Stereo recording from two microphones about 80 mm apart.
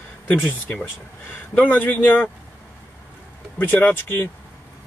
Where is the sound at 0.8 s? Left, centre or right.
Left.